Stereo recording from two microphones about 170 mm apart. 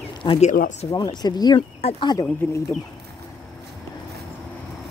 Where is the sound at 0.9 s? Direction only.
25° left (ahead or behind).